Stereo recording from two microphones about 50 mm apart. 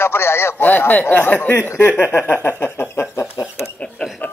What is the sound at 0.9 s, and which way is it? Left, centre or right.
Speech, left.